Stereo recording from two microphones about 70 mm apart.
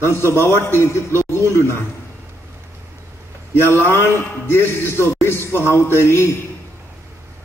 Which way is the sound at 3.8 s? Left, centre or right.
Left.